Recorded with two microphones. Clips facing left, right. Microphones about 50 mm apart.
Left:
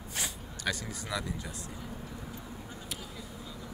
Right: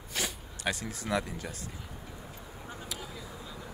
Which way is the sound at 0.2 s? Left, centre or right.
Right.